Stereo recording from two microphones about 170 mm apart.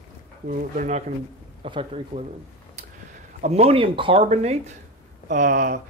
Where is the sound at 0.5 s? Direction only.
45° right (ahead or behind).